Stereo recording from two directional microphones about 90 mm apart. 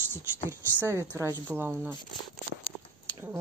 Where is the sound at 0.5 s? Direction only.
30° right (ahead or behind).